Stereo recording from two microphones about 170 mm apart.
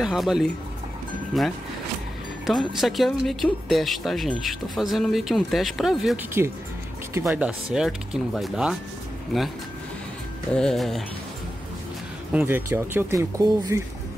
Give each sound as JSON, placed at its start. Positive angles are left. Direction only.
{"t": 0.0, "sound": "speech", "side_deg": 0}
{"t": 6.4, "sound": "speech", "side_deg": -15}
{"t": 10.5, "sound": "speech", "side_deg": 5}
{"t": 12.3, "sound": "speech", "side_deg": -10}